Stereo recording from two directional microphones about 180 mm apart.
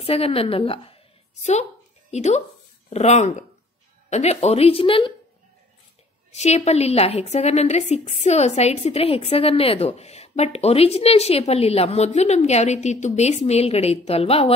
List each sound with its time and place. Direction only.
0.0 s a woman's voice: 30° left (ahead or behind)
6.3 s a woman's voice: 35° left (ahead or behind)